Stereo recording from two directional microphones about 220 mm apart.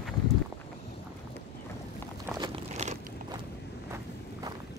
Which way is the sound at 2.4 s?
25° right (ahead or behind).